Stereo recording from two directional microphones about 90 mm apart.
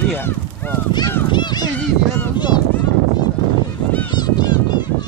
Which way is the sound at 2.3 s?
55° left (ahead or behind).